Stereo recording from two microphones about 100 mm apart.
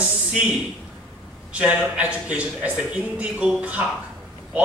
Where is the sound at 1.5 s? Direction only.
10° right (ahead or behind).